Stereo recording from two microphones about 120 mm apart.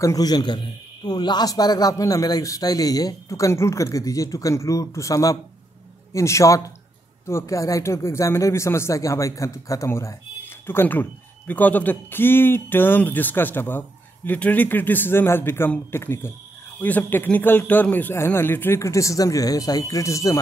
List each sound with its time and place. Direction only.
0.0 s a man's voice: 30° left (ahead or behind)